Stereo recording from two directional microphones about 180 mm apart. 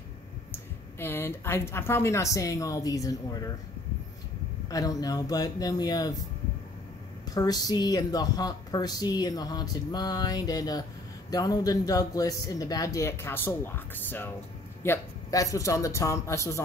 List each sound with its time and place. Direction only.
0.5 s speech: 10° left (ahead or behind)
4.6 s a woman's voice: 20° left (ahead or behind)
7.2 s a woman's voice: 20° left (ahead or behind)